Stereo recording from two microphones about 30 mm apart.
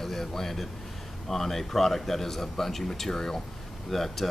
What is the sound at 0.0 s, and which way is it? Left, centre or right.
Speech, centre.